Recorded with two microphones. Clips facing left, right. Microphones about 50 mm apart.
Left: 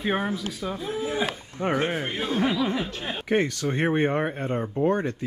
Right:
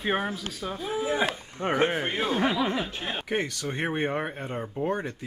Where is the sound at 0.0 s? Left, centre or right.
Centre.